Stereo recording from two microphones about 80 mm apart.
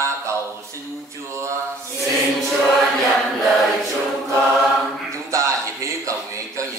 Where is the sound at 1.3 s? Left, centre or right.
Right.